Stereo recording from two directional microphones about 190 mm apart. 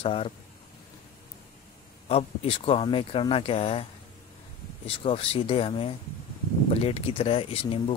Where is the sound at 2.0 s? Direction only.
30° left (ahead or behind).